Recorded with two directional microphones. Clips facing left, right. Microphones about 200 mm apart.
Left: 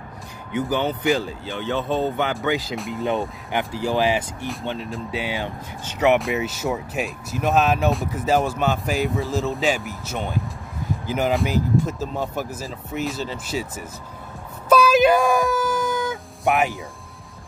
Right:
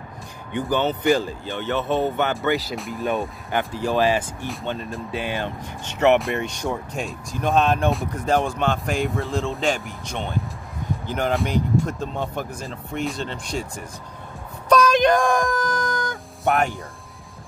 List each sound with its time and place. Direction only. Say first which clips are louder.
0.5 s speech: even; 10° left (ahead or behind)